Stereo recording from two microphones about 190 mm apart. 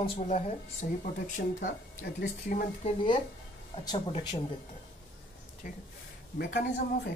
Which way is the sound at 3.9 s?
20° left (ahead or behind).